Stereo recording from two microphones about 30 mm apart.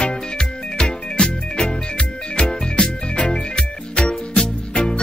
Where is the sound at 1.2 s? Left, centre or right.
Left.